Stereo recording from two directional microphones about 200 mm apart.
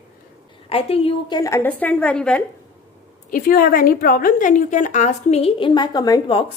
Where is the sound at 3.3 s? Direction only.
45° left (ahead or behind); by 6.4 s 20° left (ahead or behind).